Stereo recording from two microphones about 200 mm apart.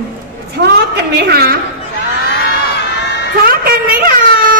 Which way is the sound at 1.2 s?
50° right (ahead or behind).